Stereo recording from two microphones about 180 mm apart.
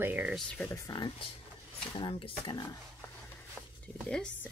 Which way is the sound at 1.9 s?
30° left (ahead or behind).